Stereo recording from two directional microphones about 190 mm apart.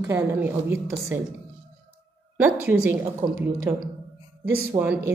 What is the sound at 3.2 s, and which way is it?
Speech, 25° right (ahead or behind).